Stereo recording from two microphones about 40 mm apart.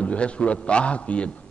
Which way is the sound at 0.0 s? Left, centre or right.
Left.